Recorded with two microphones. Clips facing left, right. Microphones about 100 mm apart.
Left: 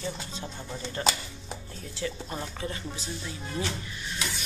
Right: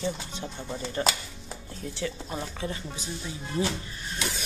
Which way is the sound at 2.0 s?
5° right (ahead or behind).